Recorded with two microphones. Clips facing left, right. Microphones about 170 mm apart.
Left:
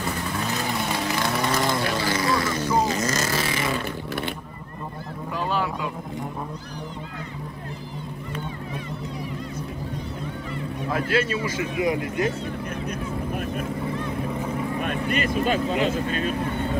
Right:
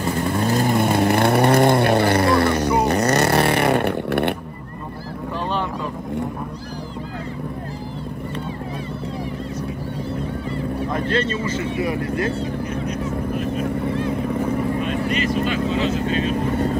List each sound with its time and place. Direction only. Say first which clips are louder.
0.5 s vehicle: right 10 dB; 50° right (ahead or behind)
10.9 s a man's voice: even; 5° left (ahead or behind)
14.8 s vehicle: right 3 dB; 55° left (ahead or behind)